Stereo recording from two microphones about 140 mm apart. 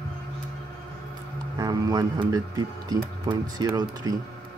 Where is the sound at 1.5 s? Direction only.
25° right (ahead or behind).